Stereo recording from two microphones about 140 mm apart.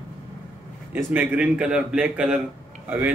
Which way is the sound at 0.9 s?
10° right (ahead or behind).